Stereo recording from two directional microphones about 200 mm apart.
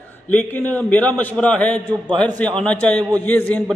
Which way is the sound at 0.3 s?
10° left (ahead or behind).